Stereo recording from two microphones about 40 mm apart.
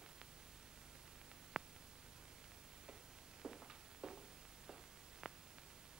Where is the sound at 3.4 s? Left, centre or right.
Centre.